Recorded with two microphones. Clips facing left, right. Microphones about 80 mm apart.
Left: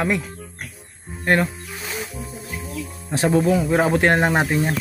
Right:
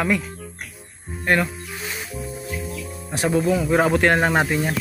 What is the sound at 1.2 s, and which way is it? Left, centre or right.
Speech, left.